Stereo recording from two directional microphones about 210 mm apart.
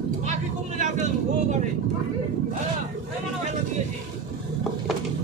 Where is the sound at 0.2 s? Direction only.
35° right (ahead or behind).